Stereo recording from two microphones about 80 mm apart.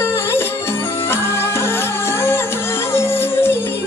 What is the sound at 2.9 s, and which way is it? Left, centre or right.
Music, left.